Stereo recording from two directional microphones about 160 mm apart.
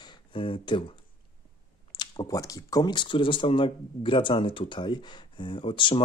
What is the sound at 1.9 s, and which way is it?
Speech, 25° left (ahead or behind).